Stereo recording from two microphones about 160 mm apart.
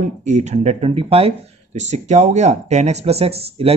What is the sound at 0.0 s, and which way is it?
Speech, 45° right (ahead or behind).